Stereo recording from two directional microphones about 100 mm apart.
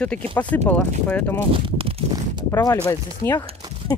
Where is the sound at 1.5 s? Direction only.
65° right (ahead or behind).